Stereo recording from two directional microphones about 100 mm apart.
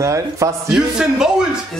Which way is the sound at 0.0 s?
30° right (ahead or behind).